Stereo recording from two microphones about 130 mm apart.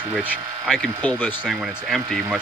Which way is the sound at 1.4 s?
5° right (ahead or behind).